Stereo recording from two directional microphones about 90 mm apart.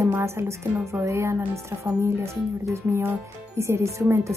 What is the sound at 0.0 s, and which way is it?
A woman's voice, 30° right (ahead or behind).